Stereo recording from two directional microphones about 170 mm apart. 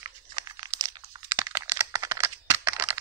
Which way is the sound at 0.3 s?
25° right (ahead or behind).